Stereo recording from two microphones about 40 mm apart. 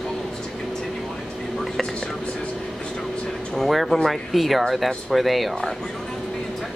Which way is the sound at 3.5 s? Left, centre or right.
Centre.